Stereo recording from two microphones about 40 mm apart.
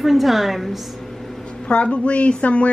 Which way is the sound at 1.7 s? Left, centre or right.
Left.